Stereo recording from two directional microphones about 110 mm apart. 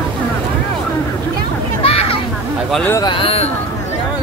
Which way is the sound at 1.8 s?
55° left (ahead or behind).